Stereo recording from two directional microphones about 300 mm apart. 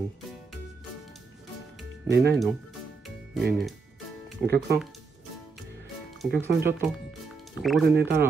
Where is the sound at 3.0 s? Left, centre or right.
Centre.